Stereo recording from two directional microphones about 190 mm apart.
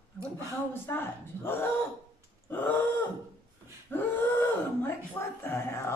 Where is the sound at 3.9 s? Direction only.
10° left (ahead or behind).